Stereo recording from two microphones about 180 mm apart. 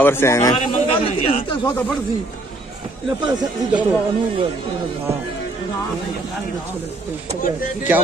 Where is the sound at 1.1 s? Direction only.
30° left (ahead or behind).